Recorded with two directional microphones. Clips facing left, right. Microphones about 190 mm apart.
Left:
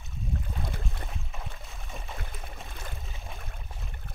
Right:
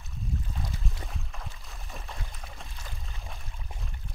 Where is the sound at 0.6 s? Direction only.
55° left (ahead or behind).